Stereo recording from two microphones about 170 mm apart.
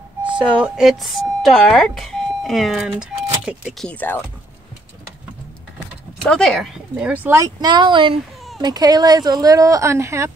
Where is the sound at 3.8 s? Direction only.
10° left (ahead or behind).